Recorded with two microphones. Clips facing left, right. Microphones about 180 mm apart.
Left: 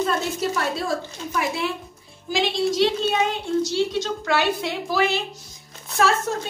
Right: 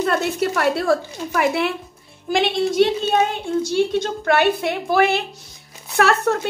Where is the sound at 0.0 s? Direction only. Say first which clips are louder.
Right 4 dB; 65° right (ahead or behind).